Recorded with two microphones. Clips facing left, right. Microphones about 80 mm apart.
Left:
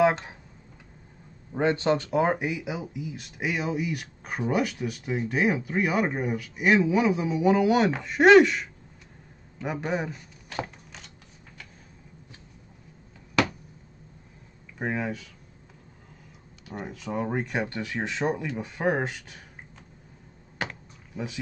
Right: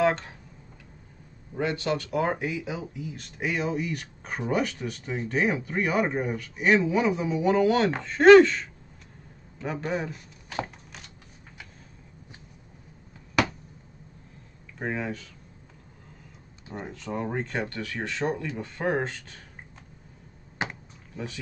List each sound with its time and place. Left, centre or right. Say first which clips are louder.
0.0 s a sound: left 2 dB; centre
1.5 s speech: left 4 dB; left; by 10.1 s centre
14.8 s speech: left 1 dB; centre
16.8 s speech: left 2 dB; centre
20.6 s computer keyboard: right 1 dB; centre
21.2 s speech: left 2 dB; centre